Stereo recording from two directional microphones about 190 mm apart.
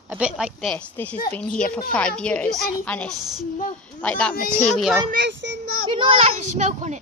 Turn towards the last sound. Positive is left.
turn(degrees=-40)  # may be behind; listen again after turning